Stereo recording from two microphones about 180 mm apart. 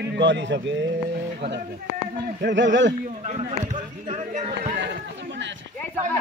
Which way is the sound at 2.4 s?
90° right.